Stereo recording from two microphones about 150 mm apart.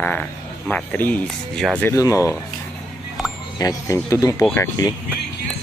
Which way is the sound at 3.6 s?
20° left (ahead or behind).